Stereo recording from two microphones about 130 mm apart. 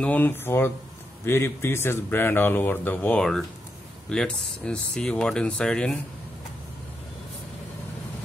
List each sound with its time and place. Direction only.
0.0 s speech: 10° left (ahead or behind)